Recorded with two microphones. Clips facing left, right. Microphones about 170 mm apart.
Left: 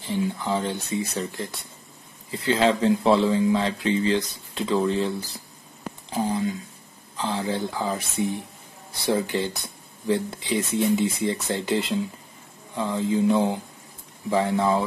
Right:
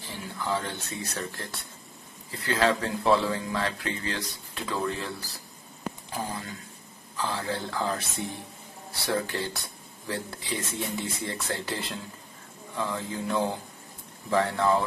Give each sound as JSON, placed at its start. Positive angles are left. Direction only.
{"t": 0.1, "sound": "speech", "side_deg": 20}
{"t": 7.2, "sound": "speech", "side_deg": 20}